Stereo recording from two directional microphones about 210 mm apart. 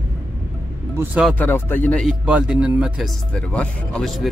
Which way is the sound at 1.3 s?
10° left (ahead or behind).